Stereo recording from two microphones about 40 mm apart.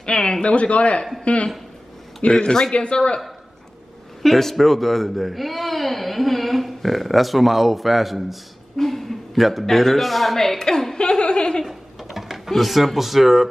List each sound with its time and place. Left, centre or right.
0.0 s speech: centre
0.5 s a man's voice: left
2.4 s speech: centre
4.2 s speech: centre
11.0 s speech: left
11.6 s music: centre